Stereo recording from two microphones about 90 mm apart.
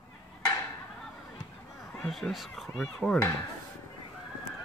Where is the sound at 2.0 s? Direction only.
Centre (ahead or behind).